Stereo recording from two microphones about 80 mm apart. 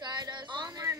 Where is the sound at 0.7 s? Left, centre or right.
Right.